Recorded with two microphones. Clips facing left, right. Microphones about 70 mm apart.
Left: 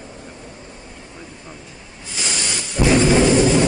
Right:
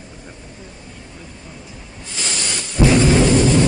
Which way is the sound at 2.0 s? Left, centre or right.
Centre.